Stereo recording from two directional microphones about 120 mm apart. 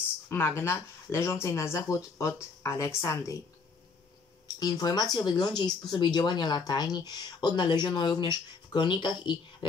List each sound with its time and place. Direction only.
0.3 s speech: 20° left (ahead or behind)
4.6 s speech: 35° left (ahead or behind)